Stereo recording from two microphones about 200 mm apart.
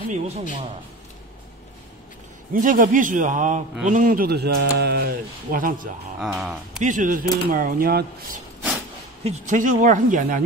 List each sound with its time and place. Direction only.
0.1 s speech: 40° right (ahead or behind)
2.5 s speech: 40° right (ahead or behind)
6.2 s speech: centre (ahead or behind)
6.8 s speech: 40° right (ahead or behind)
9.2 s speech: 35° right (ahead or behind)